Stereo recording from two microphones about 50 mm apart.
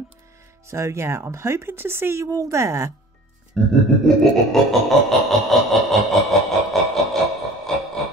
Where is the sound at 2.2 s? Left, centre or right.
Right.